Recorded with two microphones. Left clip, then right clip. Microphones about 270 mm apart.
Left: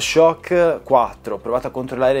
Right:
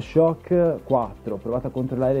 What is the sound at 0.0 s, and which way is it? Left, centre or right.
Speech, centre.